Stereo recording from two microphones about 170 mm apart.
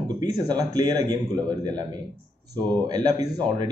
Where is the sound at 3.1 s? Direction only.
20° right (ahead or behind).